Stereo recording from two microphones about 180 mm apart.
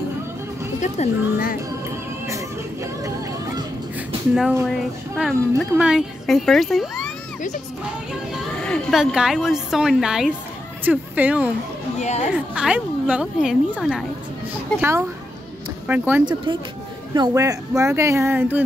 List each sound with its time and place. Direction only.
0.7 s speech: 40° left (ahead or behind)
4.4 s a woman's voice: 10° right (ahead or behind)
8.6 s a woman's voice: centre (ahead or behind)
12.0 s speech: 40° left (ahead or behind)
12.5 s a woman's voice: 5° right (ahead or behind)
17.1 s speech: 20° right (ahead or behind)